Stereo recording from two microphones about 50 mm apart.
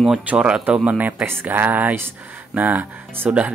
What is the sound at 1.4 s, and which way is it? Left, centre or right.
Speech, right.